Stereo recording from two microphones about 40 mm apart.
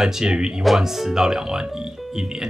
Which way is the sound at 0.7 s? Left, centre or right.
Centre.